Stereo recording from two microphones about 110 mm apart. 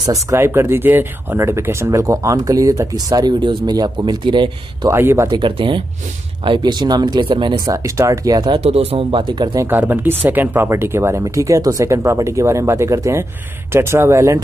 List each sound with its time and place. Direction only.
0.0 s speech: 30° right (ahead or behind); by 4.5 s 45° right (ahead or behind)
4.8 s speech: 25° right (ahead or behind)
5.3 s speech: 45° right (ahead or behind)
7.7 s speech: 25° right (ahead or behind)
8.5 s speech: 65° right (ahead or behind)
9.1 s speech: 45° right (ahead or behind)
9.7 s speech: 15° right (ahead or behind)